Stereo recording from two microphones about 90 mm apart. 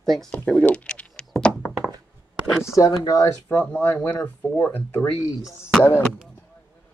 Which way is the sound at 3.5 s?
15° left (ahead or behind).